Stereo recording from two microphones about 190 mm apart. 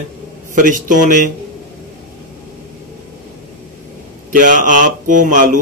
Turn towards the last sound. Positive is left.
turn(degrees=-45)  # may be behind; listen again after turning